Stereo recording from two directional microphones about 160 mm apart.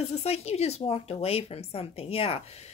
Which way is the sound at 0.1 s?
40° left (ahead or behind).